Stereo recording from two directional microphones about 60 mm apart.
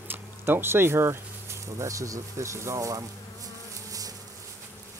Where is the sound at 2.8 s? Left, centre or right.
Right.